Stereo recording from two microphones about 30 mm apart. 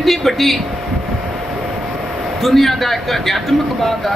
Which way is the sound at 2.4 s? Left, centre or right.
Centre.